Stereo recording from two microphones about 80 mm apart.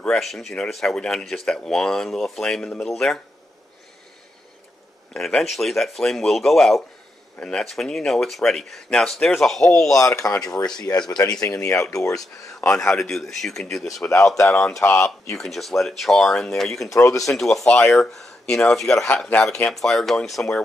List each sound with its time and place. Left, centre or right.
0.0 s speech: centre
5.1 s speech: centre
9.9 s speech: left
12.5 s speech: centre
14.8 s speech: left
15.3 s speech: centre
16.9 s speech: left
17.3 s speech: centre